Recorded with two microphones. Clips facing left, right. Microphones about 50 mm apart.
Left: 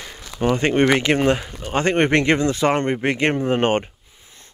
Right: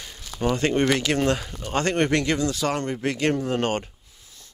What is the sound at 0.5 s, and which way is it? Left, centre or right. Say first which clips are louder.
Speech: left 4 dB; left.